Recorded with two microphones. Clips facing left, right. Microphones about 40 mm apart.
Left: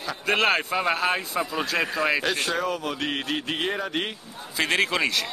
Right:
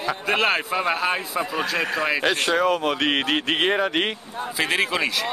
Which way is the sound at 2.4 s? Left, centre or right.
Right.